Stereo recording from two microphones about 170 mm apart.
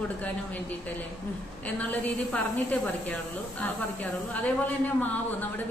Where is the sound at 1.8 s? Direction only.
10° left (ahead or behind).